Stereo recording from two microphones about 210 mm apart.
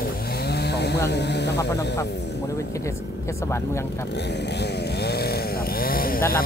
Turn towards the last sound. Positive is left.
turn(degrees=45)  # may be behind; listen again after turning